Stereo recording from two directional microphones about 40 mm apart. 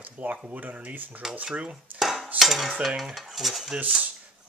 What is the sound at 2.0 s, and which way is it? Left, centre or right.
Dishes, centre.